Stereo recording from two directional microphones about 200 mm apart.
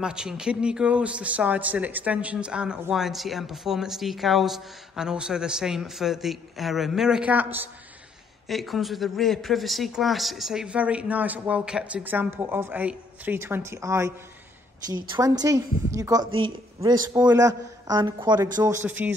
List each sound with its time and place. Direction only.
0.0 s a man's voice: 5° right (ahead or behind)
18.9 s speech: 10° right (ahead or behind)